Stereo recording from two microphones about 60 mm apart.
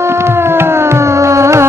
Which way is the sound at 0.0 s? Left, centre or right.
Right.